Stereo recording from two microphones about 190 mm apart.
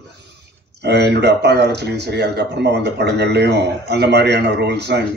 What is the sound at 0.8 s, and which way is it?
A man's voice, 60° right (ahead or behind).